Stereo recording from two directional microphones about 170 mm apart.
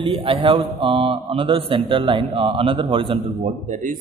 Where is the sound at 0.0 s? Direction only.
30° right (ahead or behind).